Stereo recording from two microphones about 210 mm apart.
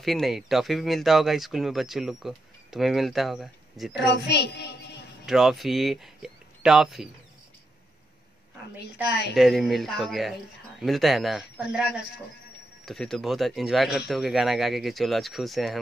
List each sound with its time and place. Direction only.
0.0 s speech: centre (ahead or behind)
4.2 s music: 55° left (ahead or behind)
5.2 s speech: centre (ahead or behind)
9.3 s speech: centre (ahead or behind)